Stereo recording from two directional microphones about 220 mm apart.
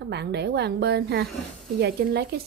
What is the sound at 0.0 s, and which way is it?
Speech, 50° right (ahead or behind).